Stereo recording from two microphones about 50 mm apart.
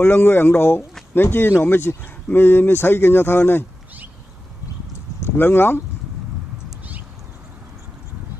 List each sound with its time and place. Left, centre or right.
0.0 s speech: left
5.2 s speech: left